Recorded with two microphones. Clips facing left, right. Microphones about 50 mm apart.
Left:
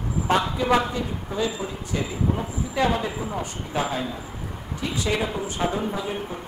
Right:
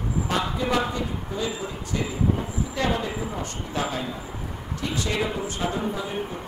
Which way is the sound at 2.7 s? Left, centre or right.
Centre.